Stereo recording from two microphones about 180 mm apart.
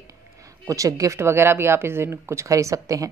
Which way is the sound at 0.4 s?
20° right (ahead or behind).